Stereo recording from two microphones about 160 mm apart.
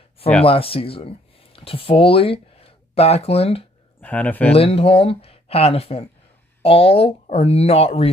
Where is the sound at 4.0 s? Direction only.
10° left (ahead or behind).